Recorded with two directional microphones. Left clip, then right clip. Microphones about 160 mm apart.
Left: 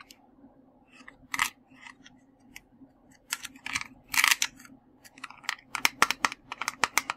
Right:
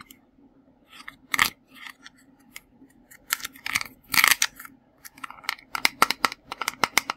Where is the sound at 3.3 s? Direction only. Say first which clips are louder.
Right 6 dB; 20° right (ahead or behind).